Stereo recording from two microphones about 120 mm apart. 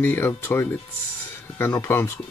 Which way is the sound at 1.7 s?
20° left (ahead or behind).